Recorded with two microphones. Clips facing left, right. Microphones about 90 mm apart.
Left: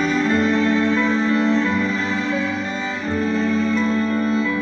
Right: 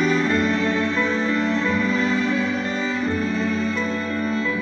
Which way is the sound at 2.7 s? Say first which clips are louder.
Right 1 dB; 15° left (ahead or behind).